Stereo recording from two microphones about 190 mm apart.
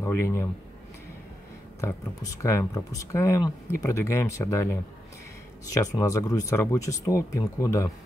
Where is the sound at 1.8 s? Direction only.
15° left (ahead or behind).